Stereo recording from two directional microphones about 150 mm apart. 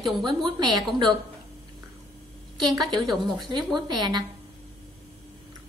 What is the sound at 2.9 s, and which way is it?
Speech, centre (ahead or behind).